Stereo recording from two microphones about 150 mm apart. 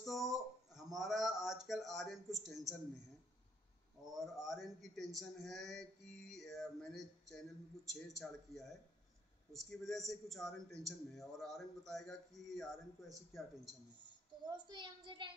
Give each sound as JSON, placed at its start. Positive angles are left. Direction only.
{"t": 0.0, "sound": "a sound", "side_deg": 0}
{"t": 1.7, "sound": "a man's voice", "side_deg": 0}
{"t": 4.1, "sound": "a man's voice", "side_deg": 0}
{"t": 14.4, "sound": "a child's voice", "side_deg": -30}